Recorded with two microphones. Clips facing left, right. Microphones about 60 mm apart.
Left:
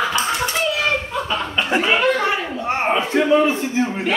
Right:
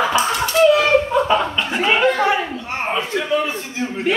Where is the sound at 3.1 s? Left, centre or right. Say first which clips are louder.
Left 5 dB; left.